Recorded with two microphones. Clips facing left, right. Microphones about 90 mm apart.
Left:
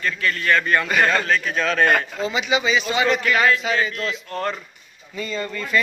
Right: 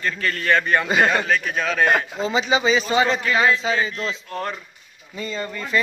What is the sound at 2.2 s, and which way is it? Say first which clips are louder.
Speech: right 4 dB; 35° right (ahead or behind).